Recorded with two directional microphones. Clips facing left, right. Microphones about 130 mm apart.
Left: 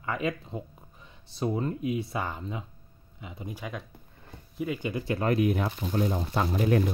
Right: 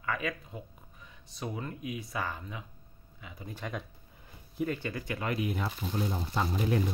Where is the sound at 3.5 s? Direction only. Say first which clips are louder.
Right 2 dB; 5° left (ahead or behind).